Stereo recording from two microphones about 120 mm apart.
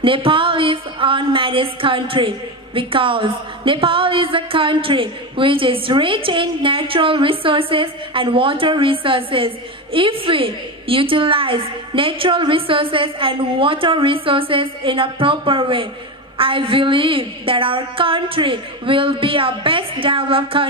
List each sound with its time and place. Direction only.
0.0 s speech: 45° right (ahead or behind)